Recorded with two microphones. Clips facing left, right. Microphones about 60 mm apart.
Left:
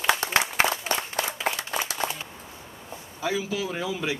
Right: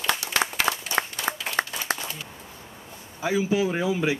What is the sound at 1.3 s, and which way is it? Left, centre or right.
Clapping, right.